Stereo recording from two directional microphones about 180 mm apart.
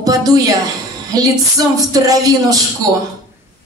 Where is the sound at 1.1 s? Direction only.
20° right (ahead or behind).